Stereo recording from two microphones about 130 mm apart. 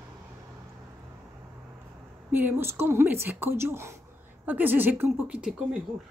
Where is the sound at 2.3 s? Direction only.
15° right (ahead or behind).